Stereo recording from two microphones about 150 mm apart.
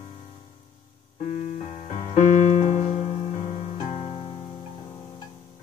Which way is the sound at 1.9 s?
55° left (ahead or behind).